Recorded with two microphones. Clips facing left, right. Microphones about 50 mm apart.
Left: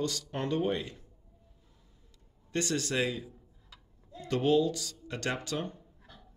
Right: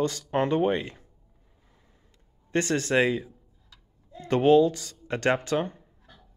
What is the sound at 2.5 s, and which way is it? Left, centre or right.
Speech, right.